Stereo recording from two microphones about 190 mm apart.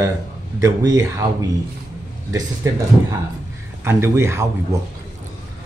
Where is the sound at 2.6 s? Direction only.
15° right (ahead or behind).